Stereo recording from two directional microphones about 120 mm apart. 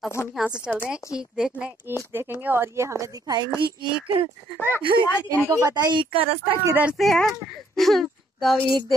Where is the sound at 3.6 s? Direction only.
45° right (ahead or behind).